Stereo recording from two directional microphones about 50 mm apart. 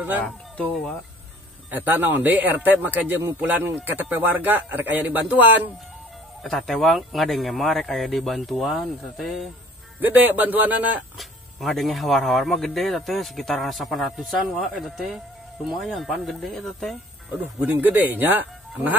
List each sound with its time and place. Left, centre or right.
1.7 s a man's voice: right
6.4 s speech: centre
9.9 s a man's voice: right
11.1 s speech: centre
17.3 s speech: right
17.6 s a man's voice: right